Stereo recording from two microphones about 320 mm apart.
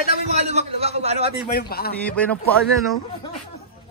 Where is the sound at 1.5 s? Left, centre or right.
Left.